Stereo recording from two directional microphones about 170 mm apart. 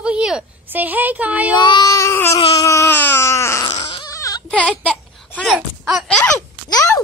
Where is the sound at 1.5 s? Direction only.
25° left (ahead or behind).